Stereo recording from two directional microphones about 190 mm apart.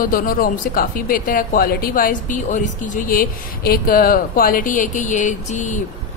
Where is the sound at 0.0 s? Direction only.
45° left (ahead or behind).